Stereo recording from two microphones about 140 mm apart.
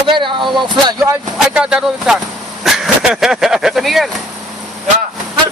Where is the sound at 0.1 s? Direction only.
35° right (ahead or behind).